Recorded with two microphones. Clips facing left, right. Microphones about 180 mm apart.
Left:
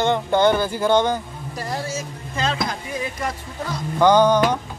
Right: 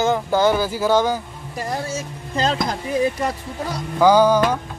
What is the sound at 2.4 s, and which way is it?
Speech, 40° right (ahead or behind).